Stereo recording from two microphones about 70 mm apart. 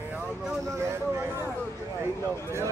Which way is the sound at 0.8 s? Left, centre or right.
Right.